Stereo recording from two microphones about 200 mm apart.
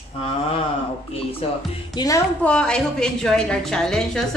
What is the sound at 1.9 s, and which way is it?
Speech, 15° left (ahead or behind).